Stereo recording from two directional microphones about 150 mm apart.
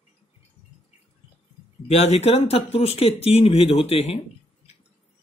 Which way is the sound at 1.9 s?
45° left (ahead or behind).